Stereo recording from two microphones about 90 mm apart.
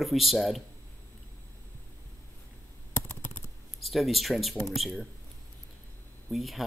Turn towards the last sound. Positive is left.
turn(degrees=0)  # may be behind; listen again after turning